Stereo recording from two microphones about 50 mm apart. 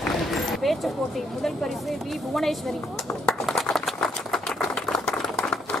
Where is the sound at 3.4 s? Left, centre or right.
Centre.